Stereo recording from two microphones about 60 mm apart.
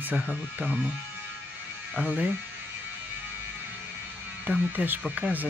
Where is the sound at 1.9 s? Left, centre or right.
Right.